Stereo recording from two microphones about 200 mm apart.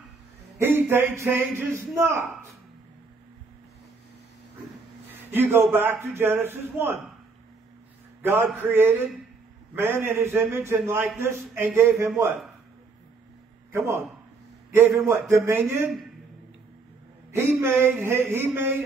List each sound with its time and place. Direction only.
0.6 s a man's voice: 10° right (ahead or behind)
5.3 s a man's voice: 10° right (ahead or behind)
8.2 s a man's voice: 10° right (ahead or behind)
13.7 s a man's voice: 10° right (ahead or behind)
17.3 s a man's voice: 15° right (ahead or behind)